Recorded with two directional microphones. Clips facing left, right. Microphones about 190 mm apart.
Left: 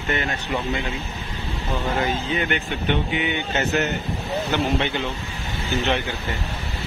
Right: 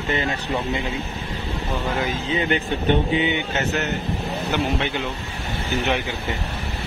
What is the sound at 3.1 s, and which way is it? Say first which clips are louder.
Speech: right 3 dB; 25° right (ahead or behind).